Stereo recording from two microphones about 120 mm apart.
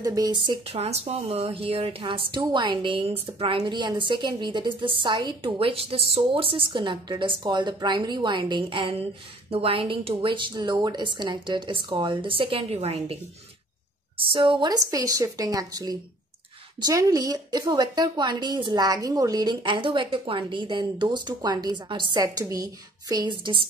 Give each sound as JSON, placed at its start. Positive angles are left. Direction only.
{"t": 0.0, "sound": "a woman's voice", "side_deg": -30}
{"t": 0.7, "sound": "a woman's voice", "side_deg": -60}
{"t": 14.1, "sound": "a woman's voice", "side_deg": -45}